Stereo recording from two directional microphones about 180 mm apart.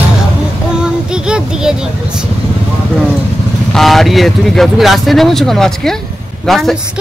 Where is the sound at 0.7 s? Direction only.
5° right (ahead or behind).